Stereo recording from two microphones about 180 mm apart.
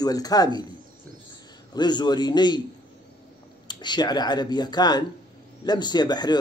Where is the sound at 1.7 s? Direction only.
25° left (ahead or behind).